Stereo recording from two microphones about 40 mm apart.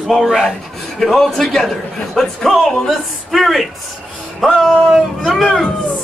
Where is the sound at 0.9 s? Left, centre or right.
Centre.